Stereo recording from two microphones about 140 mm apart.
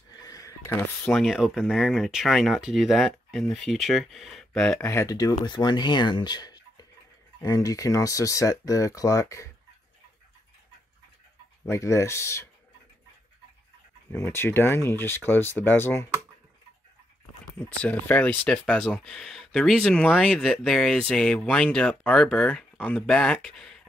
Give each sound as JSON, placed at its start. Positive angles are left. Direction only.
{"t": 0.2, "sound": "a sound", "side_deg": 25}
{"t": 1.1, "sound": "speech", "side_deg": -5}
{"t": 4.8, "sound": "speech", "side_deg": 25}
{"t": 11.6, "sound": "speech", "side_deg": 20}
{"t": 14.1, "sound": "speech", "side_deg": 15}
{"t": 17.6, "sound": "speech", "side_deg": 10}